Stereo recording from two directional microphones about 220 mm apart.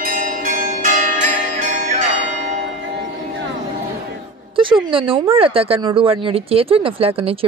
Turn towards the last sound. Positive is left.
turn(degrees=-25)  # may be behind; listen again after turning